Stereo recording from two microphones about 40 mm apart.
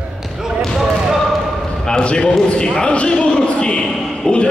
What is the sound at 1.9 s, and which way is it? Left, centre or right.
A man's voice, left.